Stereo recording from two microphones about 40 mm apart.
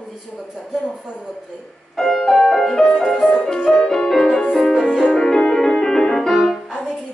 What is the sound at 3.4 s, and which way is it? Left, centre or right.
Music, centre.